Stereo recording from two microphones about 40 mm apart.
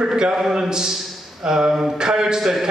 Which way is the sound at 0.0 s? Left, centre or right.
Centre.